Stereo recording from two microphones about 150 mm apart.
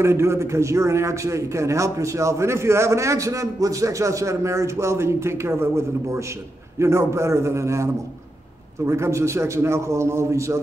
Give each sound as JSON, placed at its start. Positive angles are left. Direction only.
{"t": 0.0, "sound": "a man's voice", "side_deg": -15}